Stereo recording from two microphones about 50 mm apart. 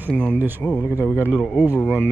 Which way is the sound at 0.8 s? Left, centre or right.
Left.